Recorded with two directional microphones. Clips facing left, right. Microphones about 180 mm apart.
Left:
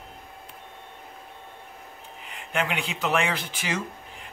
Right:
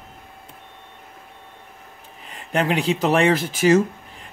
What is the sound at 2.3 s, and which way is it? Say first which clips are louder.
Speech: right 7 dB; 40° right (ahead or behind).